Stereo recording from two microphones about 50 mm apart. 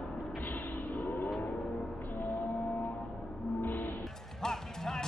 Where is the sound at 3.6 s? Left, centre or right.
Left.